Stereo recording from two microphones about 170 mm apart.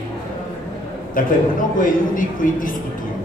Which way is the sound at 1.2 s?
55° left (ahead or behind).